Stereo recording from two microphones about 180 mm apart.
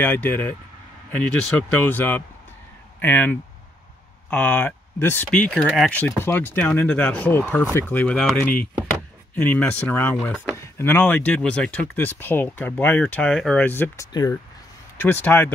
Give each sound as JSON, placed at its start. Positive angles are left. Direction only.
{"t": 0.0, "sound": "speech", "side_deg": 10}
{"t": 1.7, "sound": "speech", "side_deg": 10}